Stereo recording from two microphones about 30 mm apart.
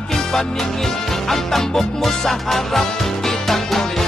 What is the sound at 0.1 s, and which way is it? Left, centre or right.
Music, centre.